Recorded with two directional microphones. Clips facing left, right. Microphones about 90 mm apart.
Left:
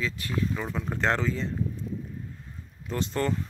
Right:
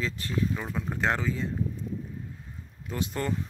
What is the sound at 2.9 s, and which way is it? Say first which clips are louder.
Speech: left 3 dB; 10° right (ahead or behind).